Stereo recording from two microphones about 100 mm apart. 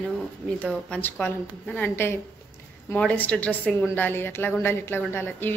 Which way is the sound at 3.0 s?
15° left (ahead or behind).